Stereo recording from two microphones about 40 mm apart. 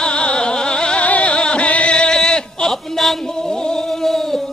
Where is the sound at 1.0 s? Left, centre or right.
Left.